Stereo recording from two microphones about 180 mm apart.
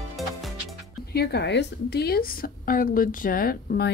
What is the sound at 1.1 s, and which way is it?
A woman's voice, 65° left (ahead or behind).